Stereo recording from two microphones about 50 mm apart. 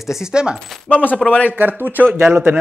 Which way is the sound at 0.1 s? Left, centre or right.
Centre.